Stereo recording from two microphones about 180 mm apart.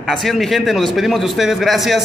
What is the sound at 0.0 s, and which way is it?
Speech, centre (ahead or behind).